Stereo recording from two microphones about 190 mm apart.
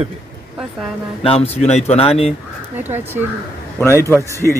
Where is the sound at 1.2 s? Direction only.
35° left (ahead or behind).